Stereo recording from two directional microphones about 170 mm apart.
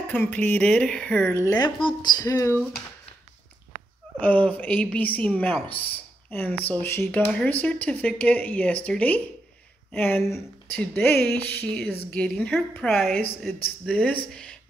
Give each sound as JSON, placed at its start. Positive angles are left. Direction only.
{"t": 0.1, "sound": "speech", "side_deg": 10}
{"t": 4.2, "sound": "speech", "side_deg": 10}